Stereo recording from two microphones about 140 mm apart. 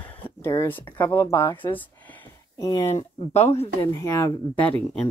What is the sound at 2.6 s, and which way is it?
Speech, 15° left (ahead or behind).